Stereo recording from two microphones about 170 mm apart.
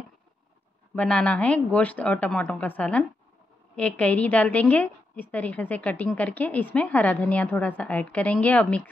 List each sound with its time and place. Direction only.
0.9 s a woman's voice: 5° left (ahead or behind)